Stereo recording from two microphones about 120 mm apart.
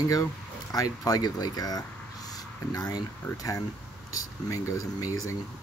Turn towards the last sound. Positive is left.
turn(degrees=25)  # may be behind; listen again after turning